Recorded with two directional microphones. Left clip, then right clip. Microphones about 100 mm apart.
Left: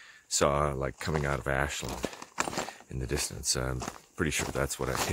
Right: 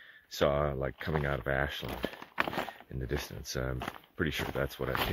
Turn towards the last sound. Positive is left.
turn(degrees=35)  # may be behind; listen again after turning